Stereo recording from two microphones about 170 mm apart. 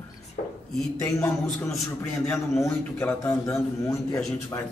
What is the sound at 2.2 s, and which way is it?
Speech, centre (ahead or behind).